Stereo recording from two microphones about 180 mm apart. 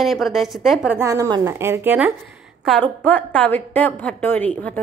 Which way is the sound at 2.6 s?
5° left (ahead or behind).